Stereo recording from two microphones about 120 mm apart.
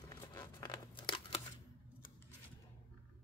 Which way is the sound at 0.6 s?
40° left (ahead or behind).